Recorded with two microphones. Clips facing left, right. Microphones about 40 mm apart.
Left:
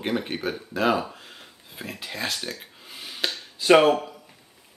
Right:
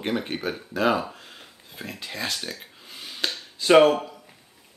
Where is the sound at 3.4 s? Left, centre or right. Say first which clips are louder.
Right 1 dB; centre.